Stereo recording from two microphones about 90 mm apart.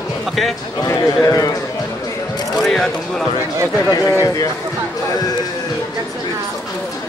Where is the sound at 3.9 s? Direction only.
40° left (ahead or behind).